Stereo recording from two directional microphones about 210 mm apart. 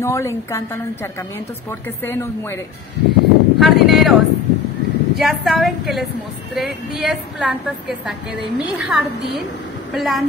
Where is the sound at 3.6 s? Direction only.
Centre (ahead or behind).